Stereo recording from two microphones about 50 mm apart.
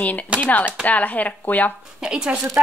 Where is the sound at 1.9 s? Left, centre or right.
Centre.